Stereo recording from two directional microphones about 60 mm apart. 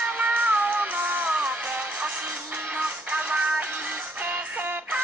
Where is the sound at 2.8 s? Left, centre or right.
Centre.